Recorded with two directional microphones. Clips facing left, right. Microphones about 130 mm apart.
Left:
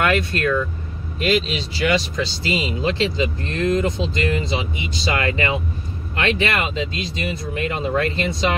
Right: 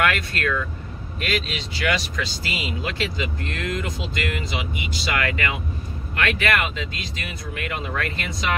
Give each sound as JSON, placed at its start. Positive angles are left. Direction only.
{"t": 0.0, "sound": "speech", "side_deg": 25}